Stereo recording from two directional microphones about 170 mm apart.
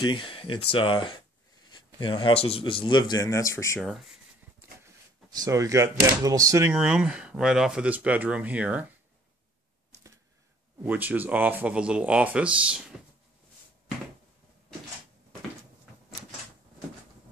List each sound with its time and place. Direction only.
0.0 s speech: 30° left (ahead or behind)
5.3 s speech: 20° right (ahead or behind)
6.7 s speech: 5° right (ahead or behind)
10.8 s speech: 10° right (ahead or behind)